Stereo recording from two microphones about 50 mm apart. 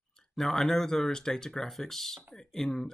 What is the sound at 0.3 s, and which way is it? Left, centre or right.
Speech, centre.